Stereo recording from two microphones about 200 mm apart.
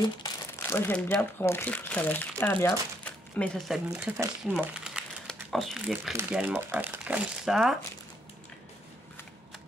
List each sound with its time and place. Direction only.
0.2 s speech: 15° left (ahead or behind); by 7.7 s centre (ahead or behind)